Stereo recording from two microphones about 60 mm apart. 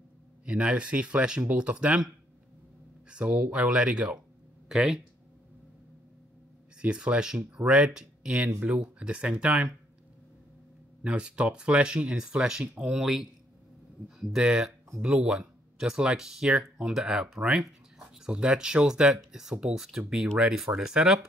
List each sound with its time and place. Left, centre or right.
0.5 s speech: centre
3.1 s speech: centre
6.8 s speech: centre
11.1 s speech: centre